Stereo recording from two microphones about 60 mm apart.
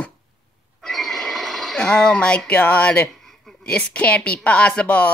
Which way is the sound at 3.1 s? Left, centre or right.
Centre.